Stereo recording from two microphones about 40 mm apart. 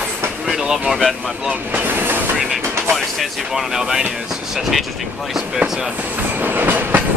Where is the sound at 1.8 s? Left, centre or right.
Right.